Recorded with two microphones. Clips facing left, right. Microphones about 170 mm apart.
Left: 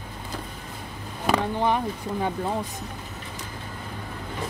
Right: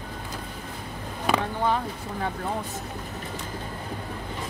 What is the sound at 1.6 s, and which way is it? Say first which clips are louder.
Speech: left 2 dB; 15° left (ahead or behind).